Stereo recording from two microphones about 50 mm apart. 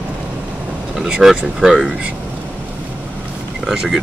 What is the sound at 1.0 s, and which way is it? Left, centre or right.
Speech, centre.